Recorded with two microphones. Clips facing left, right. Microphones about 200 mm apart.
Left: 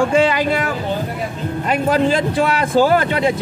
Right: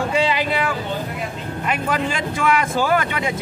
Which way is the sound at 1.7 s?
35° left (ahead or behind).